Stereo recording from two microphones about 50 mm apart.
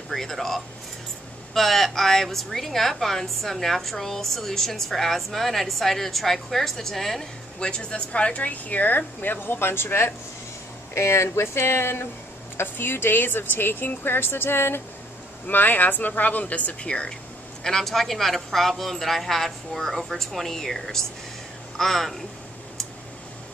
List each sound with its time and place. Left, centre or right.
0.1 s a woman's voice: centre
7.6 s speech: left
11.0 s a woman's voice: left
15.4 s speech: left
17.6 s a woman's voice: centre